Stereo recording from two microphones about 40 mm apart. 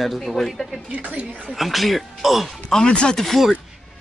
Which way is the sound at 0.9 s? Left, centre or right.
Right.